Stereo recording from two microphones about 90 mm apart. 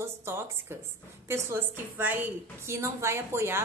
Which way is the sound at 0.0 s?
30° right (ahead or behind).